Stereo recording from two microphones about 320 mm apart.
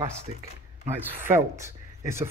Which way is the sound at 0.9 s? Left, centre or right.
Centre.